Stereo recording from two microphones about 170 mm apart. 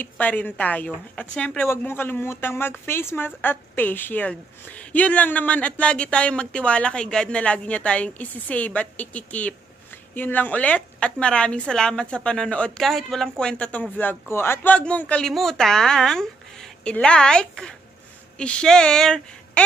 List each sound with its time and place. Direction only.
0.0 s a woman's voice: 10° left (ahead or behind)